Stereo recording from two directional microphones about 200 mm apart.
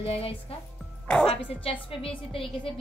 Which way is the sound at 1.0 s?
5° left (ahead or behind).